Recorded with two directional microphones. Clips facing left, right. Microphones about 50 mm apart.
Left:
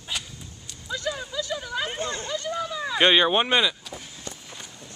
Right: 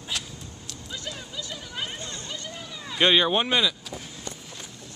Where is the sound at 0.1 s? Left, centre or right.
Centre.